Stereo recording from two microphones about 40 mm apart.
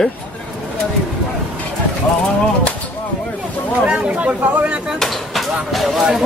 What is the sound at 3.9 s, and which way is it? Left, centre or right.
Speech, right.